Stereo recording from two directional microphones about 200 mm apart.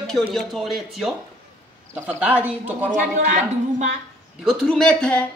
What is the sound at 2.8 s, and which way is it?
A woman's voice, 40° right (ahead or behind).